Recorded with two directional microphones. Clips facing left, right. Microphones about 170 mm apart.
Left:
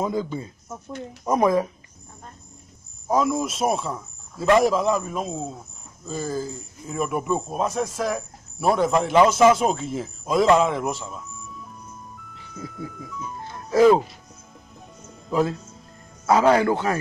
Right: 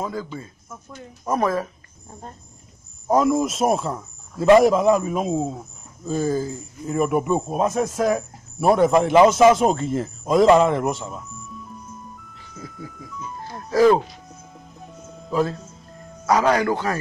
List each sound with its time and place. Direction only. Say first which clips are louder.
0.0 s speech: left 3 dB; 20° left (ahead or behind)
3.1 s a man's voice: right 4 dB; centre (ahead or behind)
13.8 s a man's voice: even; centre (ahead or behind)
15.2 s speech: even; 10° left (ahead or behind)
16.3 s speech: left 1 dB; 25° left (ahead or behind)